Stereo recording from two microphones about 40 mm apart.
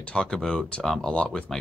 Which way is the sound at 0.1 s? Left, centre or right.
Centre.